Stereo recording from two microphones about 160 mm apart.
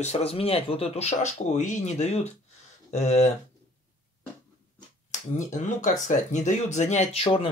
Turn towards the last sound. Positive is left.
turn(degrees=35)  # may be behind; listen again after turning